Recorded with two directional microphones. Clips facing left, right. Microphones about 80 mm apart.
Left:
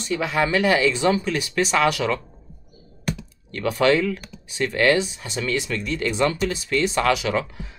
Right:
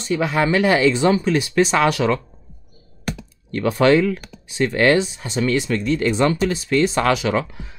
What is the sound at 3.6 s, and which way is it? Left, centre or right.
Speech, right.